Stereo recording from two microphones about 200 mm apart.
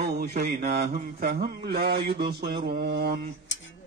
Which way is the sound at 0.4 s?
50° right (ahead or behind).